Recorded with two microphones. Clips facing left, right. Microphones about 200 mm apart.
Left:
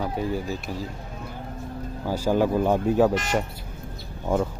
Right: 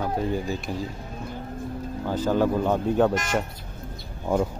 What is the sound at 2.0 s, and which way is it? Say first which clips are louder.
Speech: even; 10° left (ahead or behind).